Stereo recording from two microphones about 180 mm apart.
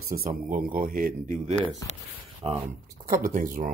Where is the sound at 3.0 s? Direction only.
45° right (ahead or behind).